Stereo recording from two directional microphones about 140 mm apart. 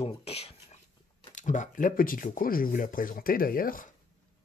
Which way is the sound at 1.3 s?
60° left (ahead or behind).